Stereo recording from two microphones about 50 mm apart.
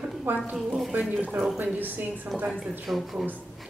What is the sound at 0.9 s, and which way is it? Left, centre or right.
Speech, right.